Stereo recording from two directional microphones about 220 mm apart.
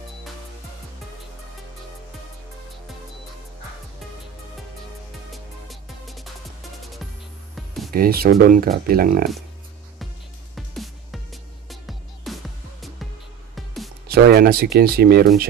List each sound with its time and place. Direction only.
5.3 s music: centre (ahead or behind)
7.5 s music: centre (ahead or behind)
7.9 s speech: 40° right (ahead or behind)
10.5 s music: centre (ahead or behind)
14.0 s speech: 45° right (ahead or behind)